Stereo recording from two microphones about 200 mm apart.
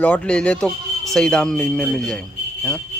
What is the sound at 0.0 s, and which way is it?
Speech, 5° left (ahead or behind).